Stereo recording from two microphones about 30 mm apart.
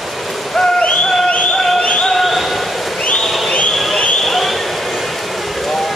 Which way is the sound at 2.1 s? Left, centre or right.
Centre.